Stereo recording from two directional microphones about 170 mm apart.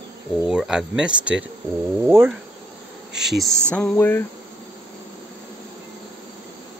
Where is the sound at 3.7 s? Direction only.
10° left (ahead or behind).